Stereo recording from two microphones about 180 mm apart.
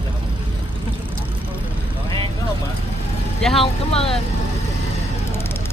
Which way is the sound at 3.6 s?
35° left (ahead or behind).